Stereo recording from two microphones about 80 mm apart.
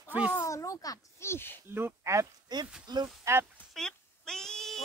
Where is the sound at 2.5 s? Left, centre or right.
Right.